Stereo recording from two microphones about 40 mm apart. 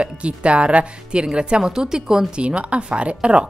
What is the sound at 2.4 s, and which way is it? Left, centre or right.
Speech, right.